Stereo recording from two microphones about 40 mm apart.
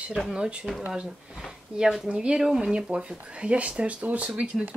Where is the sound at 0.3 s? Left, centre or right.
Right.